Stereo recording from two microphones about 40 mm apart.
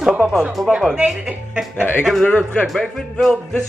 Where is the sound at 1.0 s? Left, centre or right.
Centre.